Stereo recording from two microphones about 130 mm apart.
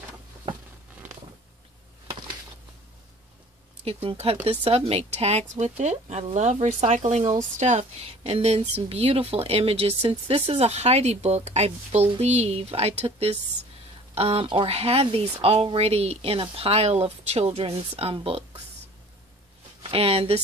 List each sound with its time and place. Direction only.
3.8 s speech: 50° right (ahead or behind)
19.8 s speech: 45° right (ahead or behind)